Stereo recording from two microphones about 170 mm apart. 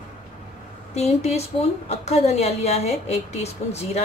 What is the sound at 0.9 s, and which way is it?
A woman's voice, 40° left (ahead or behind).